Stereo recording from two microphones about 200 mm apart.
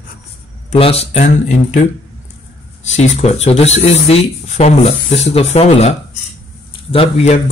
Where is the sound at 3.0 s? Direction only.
35° left (ahead or behind).